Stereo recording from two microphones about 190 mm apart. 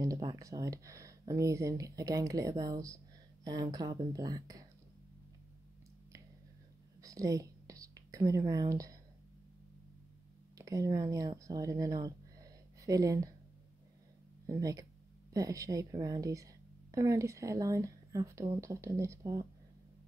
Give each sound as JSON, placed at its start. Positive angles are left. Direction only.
{"t": 0.0, "sound": "speech", "side_deg": -20}
{"t": 7.0, "sound": "whispering", "side_deg": -20}
{"t": 10.6, "sound": "speech", "side_deg": -15}
{"t": 14.4, "sound": "a woman's voice", "side_deg": -20}